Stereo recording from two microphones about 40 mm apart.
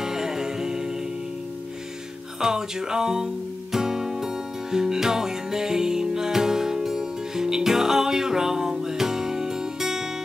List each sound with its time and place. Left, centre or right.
0.0 s music: centre
2.4 s music: centre